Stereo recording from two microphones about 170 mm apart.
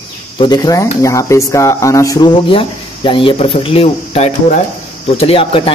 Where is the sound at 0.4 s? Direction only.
20° left (ahead or behind).